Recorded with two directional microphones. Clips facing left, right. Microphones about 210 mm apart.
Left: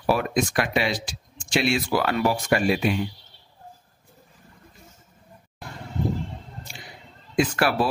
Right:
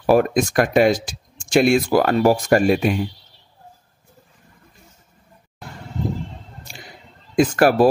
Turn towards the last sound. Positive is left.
turn(degrees=-45)  # may be behind; listen again after turning